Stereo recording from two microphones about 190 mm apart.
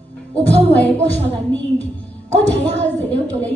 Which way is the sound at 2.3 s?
10° left (ahead or behind).